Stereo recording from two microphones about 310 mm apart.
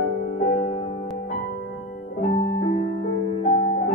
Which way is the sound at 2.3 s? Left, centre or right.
Left.